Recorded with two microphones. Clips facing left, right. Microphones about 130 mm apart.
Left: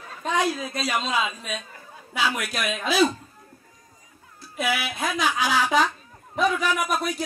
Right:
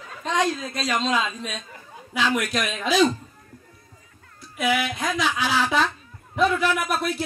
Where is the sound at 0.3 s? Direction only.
10° left (ahead or behind).